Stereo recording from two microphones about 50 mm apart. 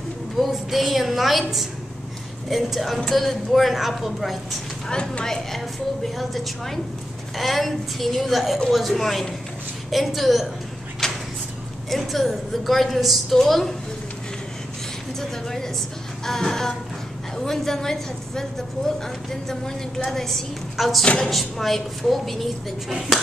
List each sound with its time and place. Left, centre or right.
0.4 s a woman's voice: centre
2.5 s a woman's voice: centre
4.8 s a woman's voice: centre
11.0 s vehicle: centre
11.9 s a woman's voice: centre
15.1 s a woman's voice: centre
21.0 s speech: left
21.3 s a woman's voice: centre